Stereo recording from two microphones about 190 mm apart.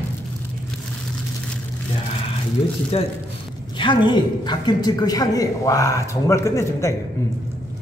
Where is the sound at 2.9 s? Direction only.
30° left (ahead or behind); by 6.9 s 15° left (ahead or behind).